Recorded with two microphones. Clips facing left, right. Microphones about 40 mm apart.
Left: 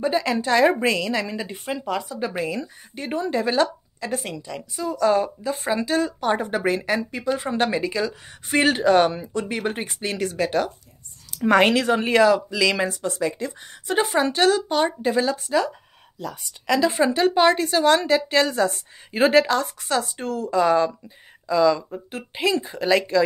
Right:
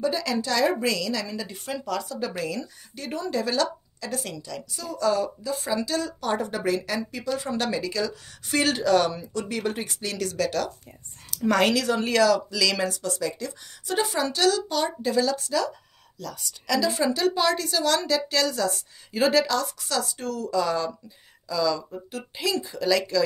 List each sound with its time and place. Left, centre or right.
0.0 s a woman's voice: left